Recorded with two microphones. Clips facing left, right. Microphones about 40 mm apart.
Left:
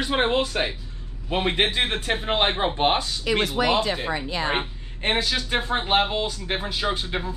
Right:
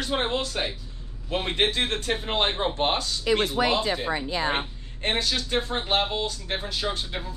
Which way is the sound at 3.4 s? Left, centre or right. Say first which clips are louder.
Left 1 dB; left.